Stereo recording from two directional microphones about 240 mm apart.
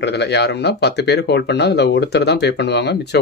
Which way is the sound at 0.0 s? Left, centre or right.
Left.